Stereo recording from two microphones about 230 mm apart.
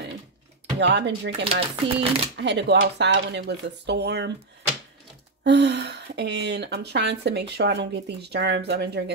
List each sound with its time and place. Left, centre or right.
0.7 s speech: right
1.6 s speech: right
2.3 s speech: right
5.4 s speech: right